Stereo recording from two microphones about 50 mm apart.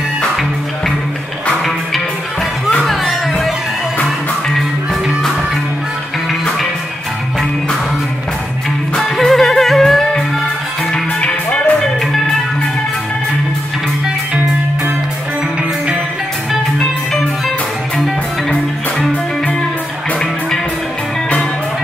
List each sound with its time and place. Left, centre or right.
2.8 s music: centre
8.9 s music: centre
10.9 s music: left
18.5 s music: left